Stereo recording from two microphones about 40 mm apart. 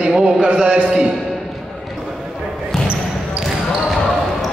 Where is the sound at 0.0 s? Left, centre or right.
Right.